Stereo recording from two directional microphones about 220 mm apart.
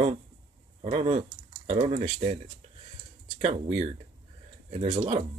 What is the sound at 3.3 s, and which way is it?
Speech, 30° right (ahead or behind).